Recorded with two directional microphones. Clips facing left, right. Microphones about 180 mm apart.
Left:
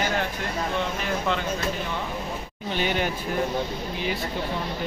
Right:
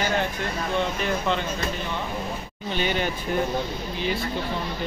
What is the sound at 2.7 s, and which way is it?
Speech, 10° left (ahead or behind).